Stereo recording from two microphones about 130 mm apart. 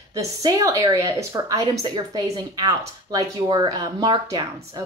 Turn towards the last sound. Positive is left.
turn(degrees=-30)  # may be behind; listen again after turning